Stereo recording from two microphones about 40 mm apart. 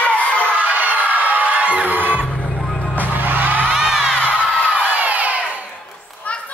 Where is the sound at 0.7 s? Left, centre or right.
Right.